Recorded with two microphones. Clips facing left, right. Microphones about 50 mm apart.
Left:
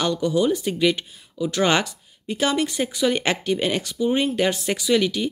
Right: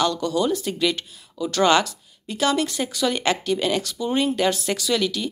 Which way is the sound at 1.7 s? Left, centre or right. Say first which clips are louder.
Right 2 dB; left.